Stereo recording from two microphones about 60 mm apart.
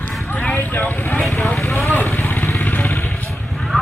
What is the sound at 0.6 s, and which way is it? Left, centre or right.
Vehicle, left.